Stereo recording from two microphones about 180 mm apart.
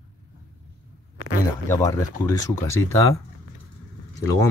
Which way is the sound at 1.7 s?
15° left (ahead or behind).